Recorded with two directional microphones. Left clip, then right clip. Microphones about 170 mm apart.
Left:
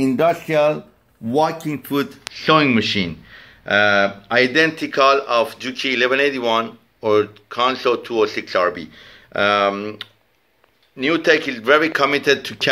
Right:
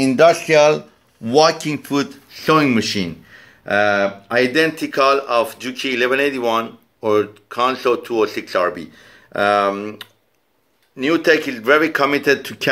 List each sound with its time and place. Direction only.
0.0 s a man's voice: 50° right (ahead or behind)